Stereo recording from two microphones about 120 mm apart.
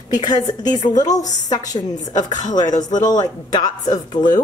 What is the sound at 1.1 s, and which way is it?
Speech, 90° left.